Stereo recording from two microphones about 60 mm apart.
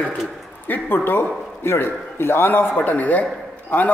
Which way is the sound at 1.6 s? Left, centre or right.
Left.